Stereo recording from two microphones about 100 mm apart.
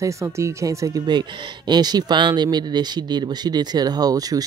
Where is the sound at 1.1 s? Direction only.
45° right (ahead or behind).